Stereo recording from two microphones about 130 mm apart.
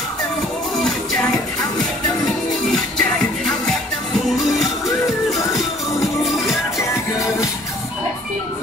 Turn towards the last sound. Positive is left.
turn(degrees=0)  # may be behind; listen again after turning